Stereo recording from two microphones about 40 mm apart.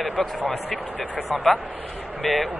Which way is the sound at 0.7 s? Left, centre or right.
Centre.